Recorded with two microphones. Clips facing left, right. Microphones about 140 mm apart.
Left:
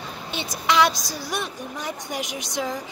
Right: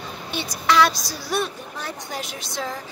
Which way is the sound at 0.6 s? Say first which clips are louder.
Right 1 dB; 20° left (ahead or behind).